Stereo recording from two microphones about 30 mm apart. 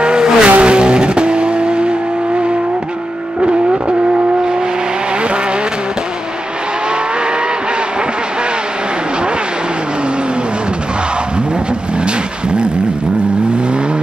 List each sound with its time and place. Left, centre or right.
0.0 s vehicle: right
3.3 s vehicle: right